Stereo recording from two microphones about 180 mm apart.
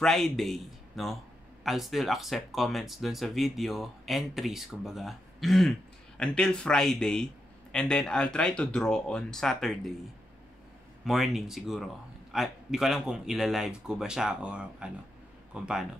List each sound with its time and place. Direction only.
0.0 s speech: centre (ahead or behind)
11.1 s speech: centre (ahead or behind)